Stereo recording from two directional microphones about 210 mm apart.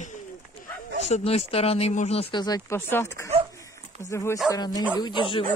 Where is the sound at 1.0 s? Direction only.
30° left (ahead or behind).